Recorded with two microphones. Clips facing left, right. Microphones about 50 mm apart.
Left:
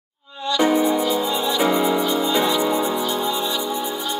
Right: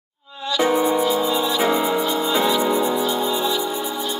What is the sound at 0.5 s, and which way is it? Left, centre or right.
Music, centre.